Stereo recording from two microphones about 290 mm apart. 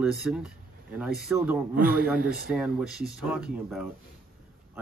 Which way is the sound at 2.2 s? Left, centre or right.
Right.